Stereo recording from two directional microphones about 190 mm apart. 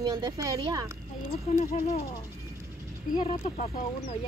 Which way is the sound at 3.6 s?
50° left (ahead or behind).